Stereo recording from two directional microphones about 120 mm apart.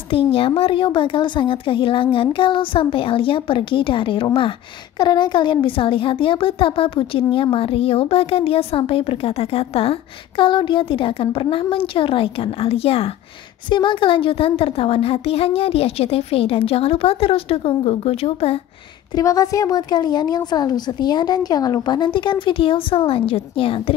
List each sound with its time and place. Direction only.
0.1 s a child's voice: 50° left (ahead or behind)
13.7 s a child's voice: 40° left (ahead or behind)
19.1 s a woman's voice: 30° left (ahead or behind); by 23.8 s 50° left (ahead or behind)